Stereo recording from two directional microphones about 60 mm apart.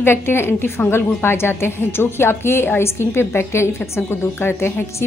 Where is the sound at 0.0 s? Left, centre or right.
Left.